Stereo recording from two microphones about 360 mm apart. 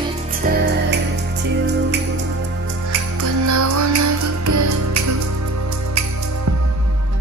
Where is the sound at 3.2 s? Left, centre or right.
Right.